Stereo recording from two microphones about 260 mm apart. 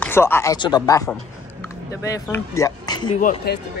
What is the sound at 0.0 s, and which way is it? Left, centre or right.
Speech, centre.